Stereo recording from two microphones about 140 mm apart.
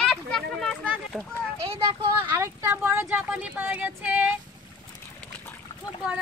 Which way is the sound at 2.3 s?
20° right (ahead or behind).